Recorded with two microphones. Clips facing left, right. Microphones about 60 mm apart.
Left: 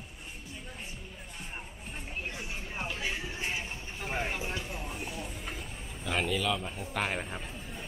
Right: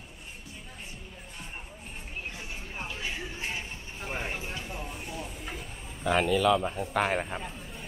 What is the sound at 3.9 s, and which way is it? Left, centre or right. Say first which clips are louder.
Vehicle: left 1 dB; centre.